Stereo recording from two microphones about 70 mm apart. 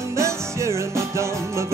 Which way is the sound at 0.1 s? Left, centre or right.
Right.